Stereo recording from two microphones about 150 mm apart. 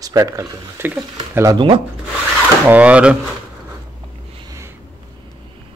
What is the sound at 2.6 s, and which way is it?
Speech, 10° right (ahead or behind).